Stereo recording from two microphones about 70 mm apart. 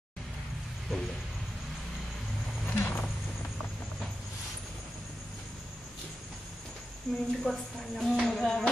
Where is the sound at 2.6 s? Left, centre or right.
Left.